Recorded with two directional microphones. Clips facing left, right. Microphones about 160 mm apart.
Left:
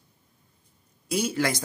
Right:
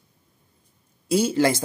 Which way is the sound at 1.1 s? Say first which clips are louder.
Right 6 dB; 30° right (ahead or behind).